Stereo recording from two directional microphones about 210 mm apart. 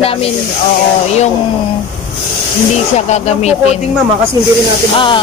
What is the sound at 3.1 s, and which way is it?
Speech, 30° left (ahead or behind).